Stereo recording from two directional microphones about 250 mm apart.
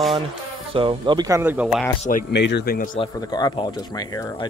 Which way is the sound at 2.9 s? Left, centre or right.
Centre.